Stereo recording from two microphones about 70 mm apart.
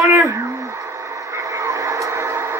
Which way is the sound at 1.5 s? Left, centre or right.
Right.